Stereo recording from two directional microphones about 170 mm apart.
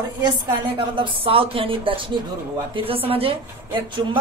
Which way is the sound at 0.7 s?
30° right (ahead or behind).